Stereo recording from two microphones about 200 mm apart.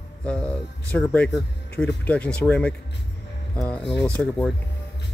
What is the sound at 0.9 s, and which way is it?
Speech, 5° left (ahead or behind).